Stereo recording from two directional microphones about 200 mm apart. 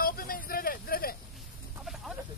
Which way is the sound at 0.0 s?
45° left (ahead or behind).